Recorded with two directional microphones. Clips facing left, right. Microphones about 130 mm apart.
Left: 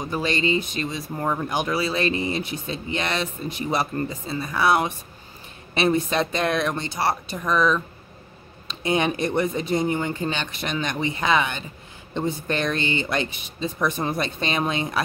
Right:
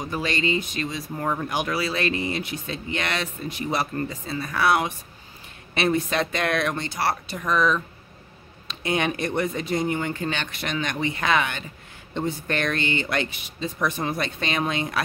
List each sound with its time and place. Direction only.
0.1 s speech: 25° left (ahead or behind)
7.4 s speech: centre (ahead or behind)
8.8 s speech: 25° left (ahead or behind)